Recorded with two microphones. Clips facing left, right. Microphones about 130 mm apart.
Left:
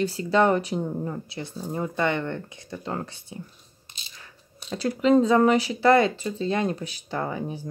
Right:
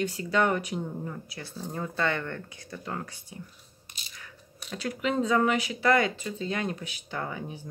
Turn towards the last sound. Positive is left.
turn(degrees=35)  # may be behind; listen again after turning